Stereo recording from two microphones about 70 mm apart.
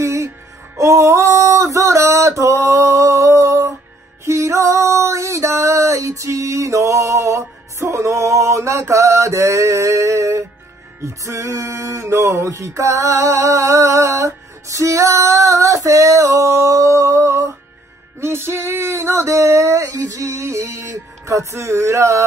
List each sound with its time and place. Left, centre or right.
0.0 s music: right
0.7 s a sound: right
4.2 s music: right
18.2 s music: right